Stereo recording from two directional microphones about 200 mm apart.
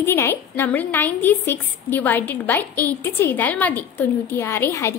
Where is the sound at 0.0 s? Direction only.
10° left (ahead or behind).